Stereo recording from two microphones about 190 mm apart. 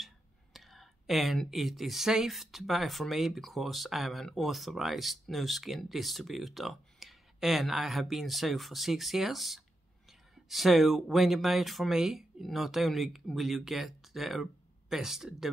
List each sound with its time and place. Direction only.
0.0 s speech: centre (ahead or behind)